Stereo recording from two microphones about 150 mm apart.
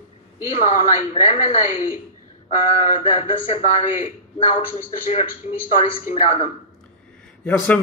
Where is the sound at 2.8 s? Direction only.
50° left (ahead or behind).